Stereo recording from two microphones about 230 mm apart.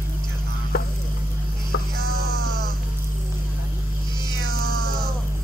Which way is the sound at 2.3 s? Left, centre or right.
Right.